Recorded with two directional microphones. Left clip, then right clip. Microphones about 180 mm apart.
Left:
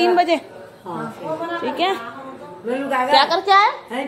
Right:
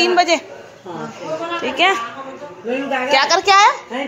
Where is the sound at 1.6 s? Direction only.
10° left (ahead or behind).